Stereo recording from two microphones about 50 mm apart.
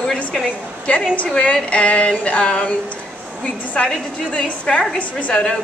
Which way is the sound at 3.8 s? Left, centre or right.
Left.